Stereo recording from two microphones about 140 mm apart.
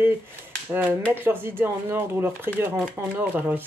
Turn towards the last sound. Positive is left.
turn(degrees=-15)  # may be behind; listen again after turning